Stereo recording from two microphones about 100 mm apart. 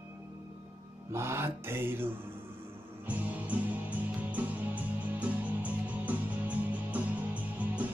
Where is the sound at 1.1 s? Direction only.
25° right (ahead or behind).